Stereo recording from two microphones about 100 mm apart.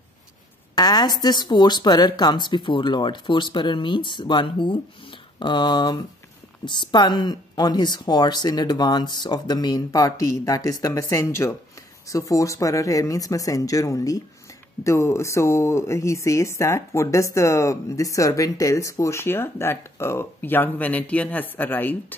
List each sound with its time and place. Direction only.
0.7 s speech: 40° left (ahead or behind); by 21.9 s 20° left (ahead or behind)